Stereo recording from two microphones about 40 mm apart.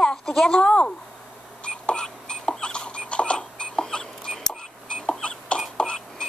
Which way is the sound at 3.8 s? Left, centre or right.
Centre.